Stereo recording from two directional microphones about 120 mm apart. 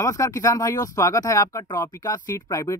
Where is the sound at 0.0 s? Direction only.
25° left (ahead or behind).